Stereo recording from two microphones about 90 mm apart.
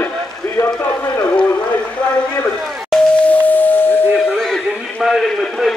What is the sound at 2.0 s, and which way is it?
Speech, 10° left (ahead or behind).